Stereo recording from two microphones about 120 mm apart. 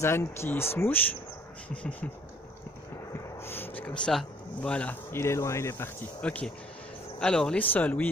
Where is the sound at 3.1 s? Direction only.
20° left (ahead or behind).